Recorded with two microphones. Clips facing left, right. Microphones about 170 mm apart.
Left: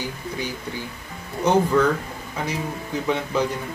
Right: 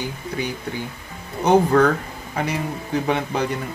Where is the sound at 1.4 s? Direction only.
60° right (ahead or behind).